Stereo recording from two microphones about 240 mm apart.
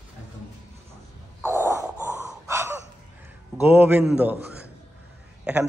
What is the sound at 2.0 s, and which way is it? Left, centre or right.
Snort, centre.